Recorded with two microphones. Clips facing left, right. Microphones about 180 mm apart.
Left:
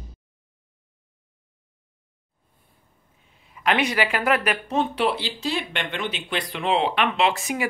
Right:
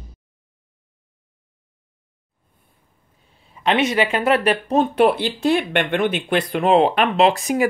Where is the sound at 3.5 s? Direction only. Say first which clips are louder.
Right 4 dB; 25° right (ahead or behind).